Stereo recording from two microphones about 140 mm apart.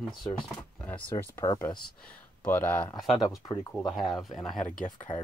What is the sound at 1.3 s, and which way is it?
Speech, 20° left (ahead or behind).